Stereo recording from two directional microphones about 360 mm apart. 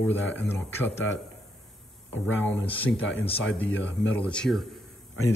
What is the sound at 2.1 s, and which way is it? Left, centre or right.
Speech, centre.